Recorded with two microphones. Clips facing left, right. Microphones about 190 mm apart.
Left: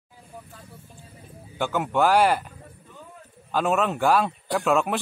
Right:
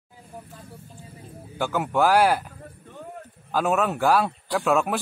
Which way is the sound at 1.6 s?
5° right (ahead or behind).